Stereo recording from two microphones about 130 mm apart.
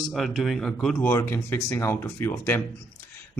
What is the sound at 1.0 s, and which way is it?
A man's voice, 20° left (ahead or behind).